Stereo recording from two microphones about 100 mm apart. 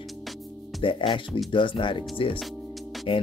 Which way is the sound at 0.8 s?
60° left (ahead or behind).